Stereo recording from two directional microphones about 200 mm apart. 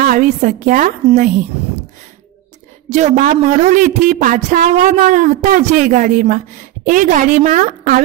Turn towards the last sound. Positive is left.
turn(degrees=-40)  # may be behind; listen again after turning